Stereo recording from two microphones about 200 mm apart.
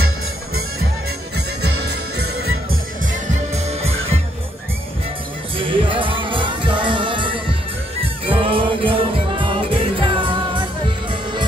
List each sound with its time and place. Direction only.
1.3 s music: 55° right (ahead or behind)
3.3 s music: 30° right (ahead or behind)
5.6 s music: 25° right (ahead or behind)